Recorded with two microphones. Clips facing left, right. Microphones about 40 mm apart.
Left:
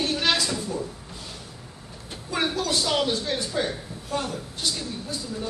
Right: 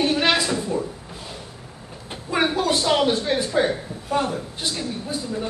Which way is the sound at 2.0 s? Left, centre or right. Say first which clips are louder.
Right 5 dB; right.